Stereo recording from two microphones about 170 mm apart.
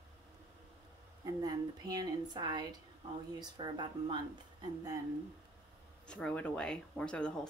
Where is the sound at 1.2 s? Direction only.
20° right (ahead or behind).